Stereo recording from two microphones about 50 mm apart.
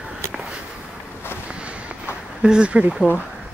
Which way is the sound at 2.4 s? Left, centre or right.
Centre.